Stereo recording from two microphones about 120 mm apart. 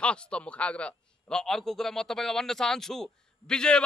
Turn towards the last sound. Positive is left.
turn(degrees=5)  # may be behind; listen again after turning